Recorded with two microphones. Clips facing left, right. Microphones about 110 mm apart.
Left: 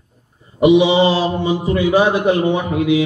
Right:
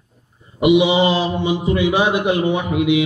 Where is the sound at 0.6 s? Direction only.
35° left (ahead or behind).